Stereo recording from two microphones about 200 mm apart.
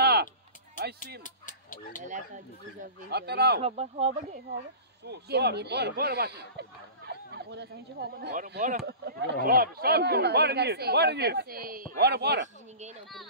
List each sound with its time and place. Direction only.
0.0 s a sound: 50° right (ahead or behind)
1.2 s speech: 40° left (ahead or behind)
3.1 s speech: 55° right (ahead or behind)
3.6 s speech: 30° right (ahead or behind)
5.0 s speech: 55° right (ahead or behind)
7.1 s a sound: 55° right (ahead or behind)
8.2 s speech: 55° right (ahead or behind)